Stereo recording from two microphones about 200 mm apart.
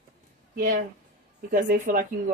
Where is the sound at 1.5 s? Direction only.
40° right (ahead or behind).